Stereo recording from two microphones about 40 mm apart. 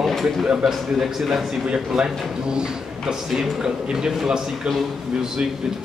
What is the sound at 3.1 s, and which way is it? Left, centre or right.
A man's voice, centre.